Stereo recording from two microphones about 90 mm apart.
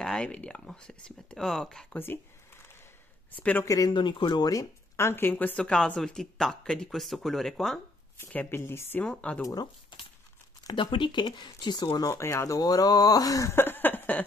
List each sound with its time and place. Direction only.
0.0 s speech: 5° left (ahead or behind)
3.3 s speech: 20° left (ahead or behind)
3.6 s speech: 35° left (ahead or behind)
3.9 s speech: 55° left (ahead or behind); by 7.8 s 5° left (ahead or behind)
8.3 s speech: 20° left (ahead or behind)
9.0 s speech: 10° left (ahead or behind)
9.4 s speech: 40° left (ahead or behind)
9.9 s crumpling: 65° left (ahead or behind)
10.7 s speech: 65° left (ahead or behind)
12.1 s speech: 30° left (ahead or behind)